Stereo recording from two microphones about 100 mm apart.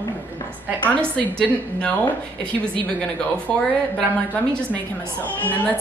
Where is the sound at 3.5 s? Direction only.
10° left (ahead or behind).